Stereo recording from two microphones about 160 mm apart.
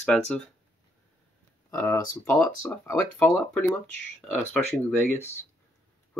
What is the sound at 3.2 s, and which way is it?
Speech, centre (ahead or behind).